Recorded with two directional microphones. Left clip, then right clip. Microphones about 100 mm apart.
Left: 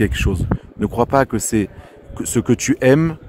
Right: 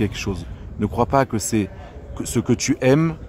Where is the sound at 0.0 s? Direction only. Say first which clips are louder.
Left 5 dB; 30° left (ahead or behind).